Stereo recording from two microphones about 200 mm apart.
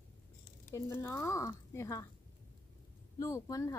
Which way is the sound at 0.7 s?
15° left (ahead or behind).